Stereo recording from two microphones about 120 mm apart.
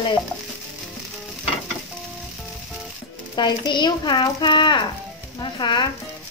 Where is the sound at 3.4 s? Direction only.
40° left (ahead or behind).